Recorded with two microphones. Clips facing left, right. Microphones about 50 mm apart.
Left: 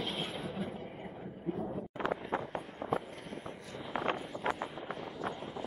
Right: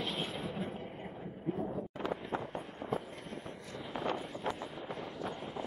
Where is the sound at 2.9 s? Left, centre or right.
Left.